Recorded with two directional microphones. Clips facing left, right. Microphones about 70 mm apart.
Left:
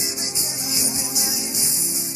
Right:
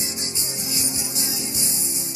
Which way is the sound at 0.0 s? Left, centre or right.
Centre.